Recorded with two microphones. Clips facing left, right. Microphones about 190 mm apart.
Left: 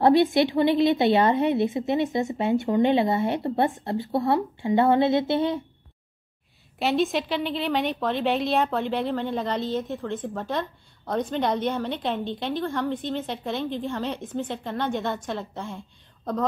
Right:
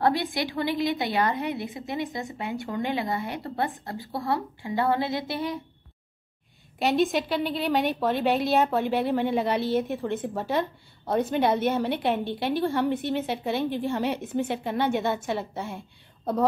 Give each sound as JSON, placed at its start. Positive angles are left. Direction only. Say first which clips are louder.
{"t": 0.0, "sound": "a woman's voice", "louder": "left 7 dB", "side_deg": 25}
{"t": 6.8, "sound": "a woman's voice", "louder": "even", "side_deg": 0}